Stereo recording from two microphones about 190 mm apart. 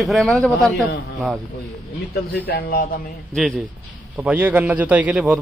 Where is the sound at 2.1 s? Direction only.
55° left (ahead or behind).